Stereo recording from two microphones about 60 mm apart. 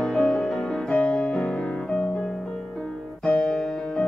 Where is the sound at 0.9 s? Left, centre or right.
Left.